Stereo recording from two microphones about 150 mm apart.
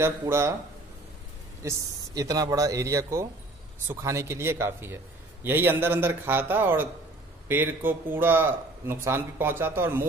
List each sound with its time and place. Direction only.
0.0 s a man's voice: 20° right (ahead or behind)
1.6 s a man's voice: 20° right (ahead or behind)